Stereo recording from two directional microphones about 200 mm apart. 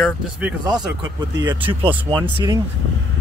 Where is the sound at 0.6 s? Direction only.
20° right (ahead or behind).